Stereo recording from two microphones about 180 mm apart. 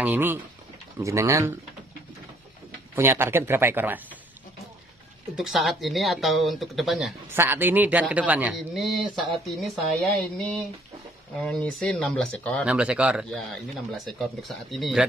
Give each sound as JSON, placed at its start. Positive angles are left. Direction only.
{"t": 0.0, "sound": "a man's voice", "side_deg": -10}
{"t": 3.0, "sound": "a man's voice", "side_deg": -15}
{"t": 5.3, "sound": "speech", "side_deg": 0}
{"t": 7.2, "sound": "a man's voice", "side_deg": -10}